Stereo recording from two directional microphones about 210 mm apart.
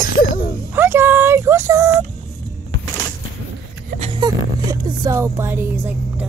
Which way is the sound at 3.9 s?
30° right (ahead or behind).